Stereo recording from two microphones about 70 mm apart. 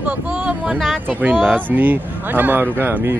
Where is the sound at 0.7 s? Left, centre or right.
Centre.